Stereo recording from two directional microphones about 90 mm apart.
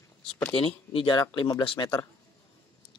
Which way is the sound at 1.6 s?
70° left (ahead or behind).